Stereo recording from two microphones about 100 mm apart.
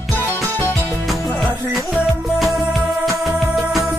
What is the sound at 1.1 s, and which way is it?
Music, centre (ahead or behind).